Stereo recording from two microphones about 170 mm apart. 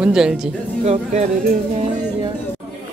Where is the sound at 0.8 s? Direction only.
40° right (ahead or behind).